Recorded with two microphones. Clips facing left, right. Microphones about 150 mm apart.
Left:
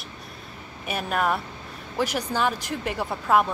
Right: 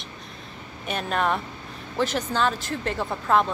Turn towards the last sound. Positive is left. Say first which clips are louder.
# even
turn(degrees=10)  # may be behind; listen again after turning